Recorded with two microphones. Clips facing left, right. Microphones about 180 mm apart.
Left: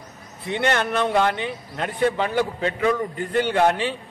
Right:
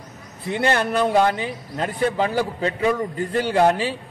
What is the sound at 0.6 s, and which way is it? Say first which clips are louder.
A man's voice: right 2 dB; 35° right (ahead or behind).